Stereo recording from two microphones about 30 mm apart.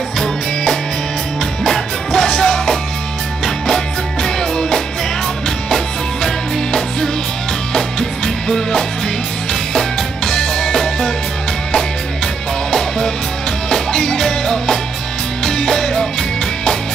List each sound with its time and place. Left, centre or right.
1.7 s music: centre
6.2 s music: centre
13.7 s music: centre